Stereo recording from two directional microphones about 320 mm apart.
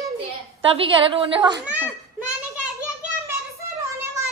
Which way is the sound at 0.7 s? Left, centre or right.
Centre.